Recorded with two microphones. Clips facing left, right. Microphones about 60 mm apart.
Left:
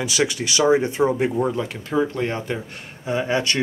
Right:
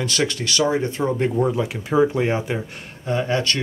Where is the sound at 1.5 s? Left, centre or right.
Centre.